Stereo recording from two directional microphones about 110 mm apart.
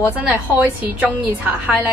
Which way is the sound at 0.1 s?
10° right (ahead or behind).